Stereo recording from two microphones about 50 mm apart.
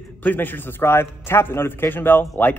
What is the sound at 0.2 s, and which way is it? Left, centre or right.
A man's voice, left.